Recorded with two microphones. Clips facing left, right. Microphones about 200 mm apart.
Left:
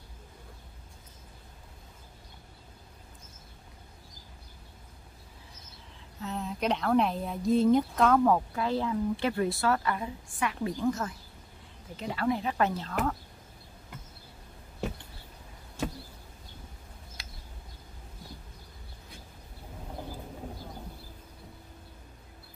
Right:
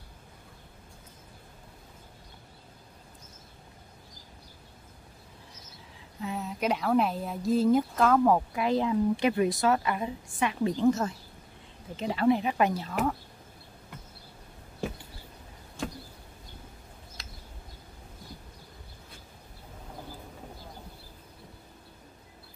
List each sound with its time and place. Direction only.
6.2 s speech: 5° right (ahead or behind)